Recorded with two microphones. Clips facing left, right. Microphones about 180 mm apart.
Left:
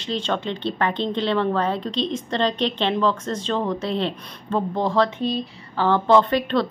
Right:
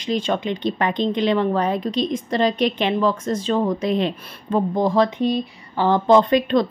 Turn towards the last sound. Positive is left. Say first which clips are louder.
# right 2 dB
turn(degrees=-15)  # may be behind; listen again after turning